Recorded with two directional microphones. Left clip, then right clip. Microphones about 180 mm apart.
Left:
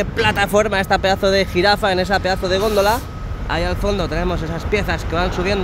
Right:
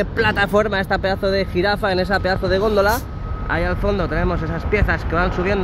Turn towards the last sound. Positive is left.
turn(degrees=15)  # may be behind; listen again after turning